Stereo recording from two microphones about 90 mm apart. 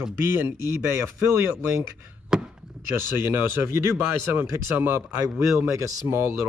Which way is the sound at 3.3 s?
25° right (ahead or behind).